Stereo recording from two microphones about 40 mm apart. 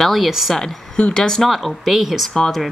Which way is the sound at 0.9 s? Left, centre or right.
Left.